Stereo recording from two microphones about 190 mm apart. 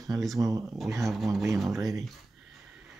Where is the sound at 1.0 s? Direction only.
Centre (ahead or behind).